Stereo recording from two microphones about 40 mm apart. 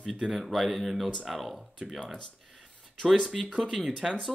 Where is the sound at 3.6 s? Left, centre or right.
Centre.